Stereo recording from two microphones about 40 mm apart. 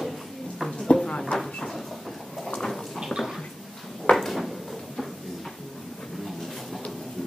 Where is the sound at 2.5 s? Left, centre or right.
Centre.